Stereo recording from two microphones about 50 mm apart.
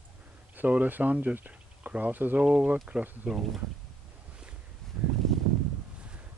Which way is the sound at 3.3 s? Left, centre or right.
Centre.